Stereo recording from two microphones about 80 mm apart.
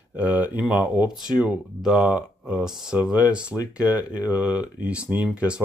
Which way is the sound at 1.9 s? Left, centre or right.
Centre.